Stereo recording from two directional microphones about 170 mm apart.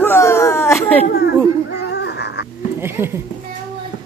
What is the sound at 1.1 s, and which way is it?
Children playing, 75° left (ahead or behind).